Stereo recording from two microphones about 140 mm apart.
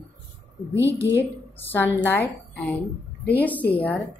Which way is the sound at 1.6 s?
15° left (ahead or behind).